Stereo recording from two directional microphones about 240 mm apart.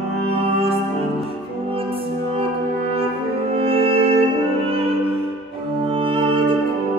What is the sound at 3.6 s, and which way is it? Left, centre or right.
Music, right.